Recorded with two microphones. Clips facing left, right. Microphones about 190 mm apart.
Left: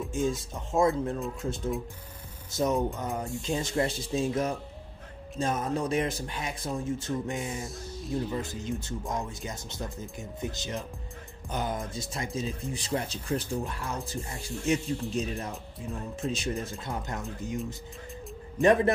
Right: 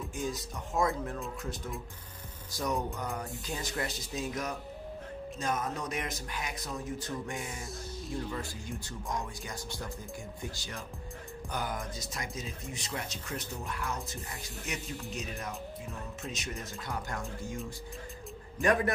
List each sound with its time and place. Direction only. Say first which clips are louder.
0.1 s speech: left 8 dB; 25° left (ahead or behind)
2.5 s speech: left 6 dB; 25° left (ahead or behind)
18.6 s speech: left 6 dB; 25° left (ahead or behind)